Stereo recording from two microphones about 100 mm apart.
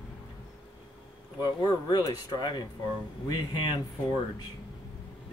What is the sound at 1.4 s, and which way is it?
Speech, 45° left (ahead or behind).